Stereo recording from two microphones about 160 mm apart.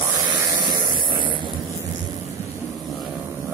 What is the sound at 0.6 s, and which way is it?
Spray, 30° right (ahead or behind).